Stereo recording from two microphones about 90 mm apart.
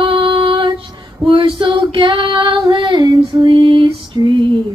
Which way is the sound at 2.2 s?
70° right (ahead or behind).